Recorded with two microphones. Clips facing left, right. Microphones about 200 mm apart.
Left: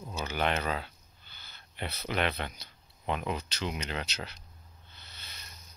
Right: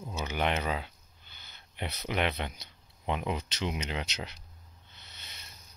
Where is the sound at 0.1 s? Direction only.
20° right (ahead or behind).